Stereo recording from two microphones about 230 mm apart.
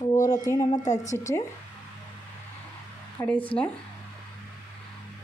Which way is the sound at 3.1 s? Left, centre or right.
Centre.